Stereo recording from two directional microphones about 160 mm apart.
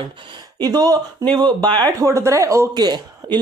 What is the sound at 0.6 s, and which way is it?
Speech, 25° right (ahead or behind).